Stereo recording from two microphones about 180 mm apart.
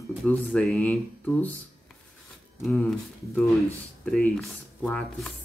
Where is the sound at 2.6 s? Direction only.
5° left (ahead or behind).